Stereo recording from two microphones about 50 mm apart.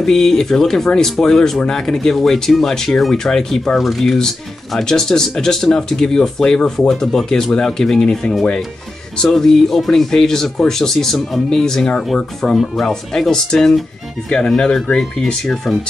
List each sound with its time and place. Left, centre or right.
0.0 s speech: centre
3.7 s speech: centre
15.4 s speech: centre